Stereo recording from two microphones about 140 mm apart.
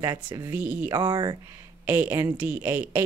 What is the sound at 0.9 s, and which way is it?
Speech, 35° right (ahead or behind).